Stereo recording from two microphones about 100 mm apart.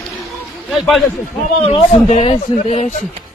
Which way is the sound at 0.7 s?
Centre (ahead or behind).